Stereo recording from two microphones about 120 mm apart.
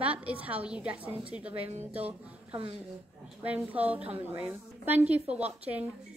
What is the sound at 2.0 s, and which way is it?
Speech, 55° right (ahead or behind).